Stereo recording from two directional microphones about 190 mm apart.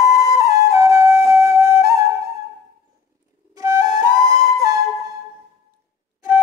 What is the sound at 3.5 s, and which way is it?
Flute, 20° right (ahead or behind).